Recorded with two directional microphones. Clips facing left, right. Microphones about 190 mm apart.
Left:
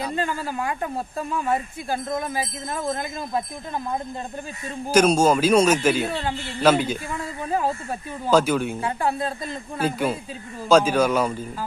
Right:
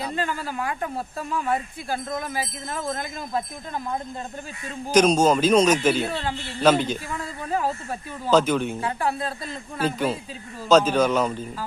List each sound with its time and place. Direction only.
0.1 s speech: 20° left (ahead or behind)
4.9 s a man's voice: 10° left (ahead or behind)
8.8 s speech: 20° left (ahead or behind)
9.8 s a man's voice: 10° left (ahead or behind)